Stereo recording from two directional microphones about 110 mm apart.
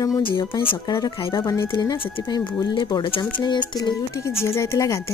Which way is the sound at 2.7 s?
45° left (ahead or behind).